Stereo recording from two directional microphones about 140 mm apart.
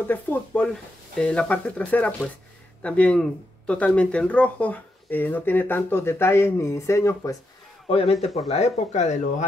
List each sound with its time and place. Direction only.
0.1 s speech: 10° left (ahead or behind)
7.9 s speech: 45° left (ahead or behind)